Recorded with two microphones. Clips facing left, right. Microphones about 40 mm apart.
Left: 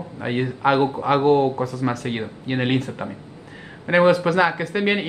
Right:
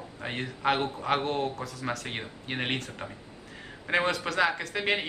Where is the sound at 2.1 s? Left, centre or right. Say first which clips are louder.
Left 9 dB; centre.